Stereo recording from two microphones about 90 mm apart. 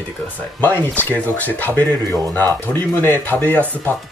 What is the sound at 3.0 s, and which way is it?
Speech, 20° left (ahead or behind).